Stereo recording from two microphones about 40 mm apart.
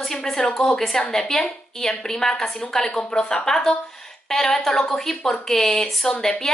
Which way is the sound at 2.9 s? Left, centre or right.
Left.